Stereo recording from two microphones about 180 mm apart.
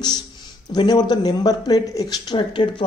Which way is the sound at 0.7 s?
25° left (ahead or behind).